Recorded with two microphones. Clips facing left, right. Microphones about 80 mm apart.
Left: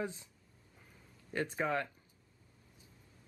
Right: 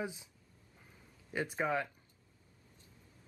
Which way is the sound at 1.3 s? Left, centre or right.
Centre.